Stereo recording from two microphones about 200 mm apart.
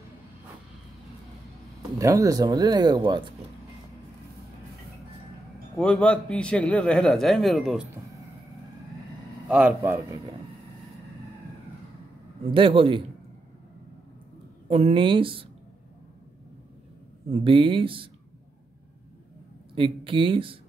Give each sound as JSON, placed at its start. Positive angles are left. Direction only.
{"t": 1.8, "sound": "speech", "side_deg": -15}
{"t": 5.8, "sound": "a man's voice", "side_deg": 5}
{"t": 9.5, "sound": "a man's voice", "side_deg": -5}
{"t": 12.4, "sound": "speech", "side_deg": -25}
{"t": 14.7, "sound": "speech", "side_deg": -30}
{"t": 17.3, "sound": "speech", "side_deg": -25}
{"t": 19.7, "sound": "speech", "side_deg": -25}